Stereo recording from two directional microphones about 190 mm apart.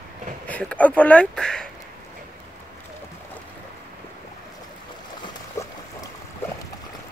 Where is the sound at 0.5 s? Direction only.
5° left (ahead or behind).